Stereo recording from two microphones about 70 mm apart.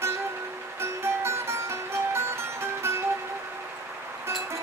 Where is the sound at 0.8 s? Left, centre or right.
Right.